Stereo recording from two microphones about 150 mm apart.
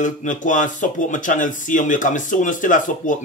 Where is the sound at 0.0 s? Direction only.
55° left (ahead or behind).